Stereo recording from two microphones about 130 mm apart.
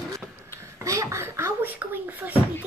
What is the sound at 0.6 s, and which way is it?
Speech, 25° right (ahead or behind).